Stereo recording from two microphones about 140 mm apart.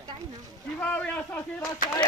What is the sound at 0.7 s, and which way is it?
Speech, 10° left (ahead or behind).